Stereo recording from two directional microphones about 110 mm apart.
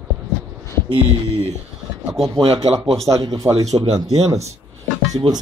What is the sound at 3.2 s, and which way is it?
Speech, 30° right (ahead or behind).